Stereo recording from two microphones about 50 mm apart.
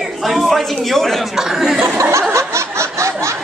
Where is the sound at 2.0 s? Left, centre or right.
Right.